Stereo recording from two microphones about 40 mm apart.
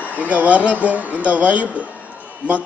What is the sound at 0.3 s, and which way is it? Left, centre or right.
A man's voice, right.